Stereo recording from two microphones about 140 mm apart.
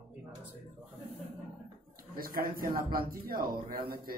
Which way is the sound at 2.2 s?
90° right.